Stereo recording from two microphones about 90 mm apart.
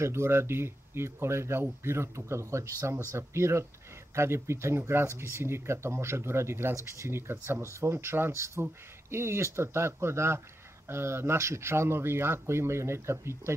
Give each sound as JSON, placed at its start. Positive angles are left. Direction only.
{"t": 0.0, "sound": "speech", "side_deg": -30}